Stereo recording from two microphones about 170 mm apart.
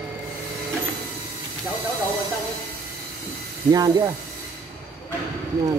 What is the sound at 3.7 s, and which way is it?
Speech, 20° right (ahead or behind).